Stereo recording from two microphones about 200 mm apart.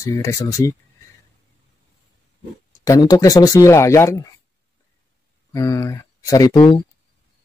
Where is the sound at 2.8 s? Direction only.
15° left (ahead or behind).